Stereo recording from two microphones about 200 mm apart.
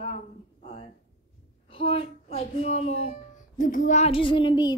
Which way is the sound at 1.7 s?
25° left (ahead or behind).